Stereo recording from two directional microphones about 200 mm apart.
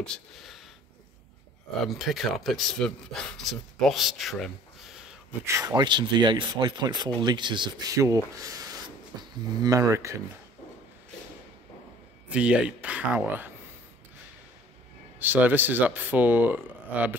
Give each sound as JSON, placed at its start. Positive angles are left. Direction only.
{"t": 0.0, "sound": "speech", "side_deg": 0}
{"t": 1.9, "sound": "speech", "side_deg": 0}
{"t": 5.4, "sound": "speech", "side_deg": -15}
{"t": 9.1, "sound": "a sound", "side_deg": -20}
{"t": 9.6, "sound": "speech", "side_deg": -15}
{"t": 12.3, "sound": "speech", "side_deg": -5}
{"t": 15.1, "sound": "speech", "side_deg": -10}